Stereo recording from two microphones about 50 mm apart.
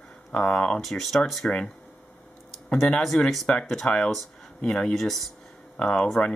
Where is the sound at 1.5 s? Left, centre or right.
Centre.